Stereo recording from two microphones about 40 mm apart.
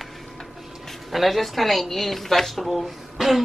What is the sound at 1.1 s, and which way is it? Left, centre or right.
A woman's voice, centre.